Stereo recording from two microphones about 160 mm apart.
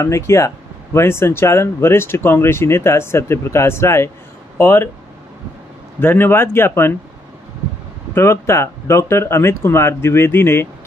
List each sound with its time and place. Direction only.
0.0 s speech: 15° left (ahead or behind)
5.9 s speech: 15° left (ahead or behind)
8.1 s speech: 15° left (ahead or behind)